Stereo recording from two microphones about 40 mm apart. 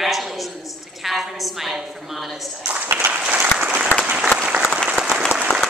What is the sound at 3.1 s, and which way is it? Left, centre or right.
Applause, right.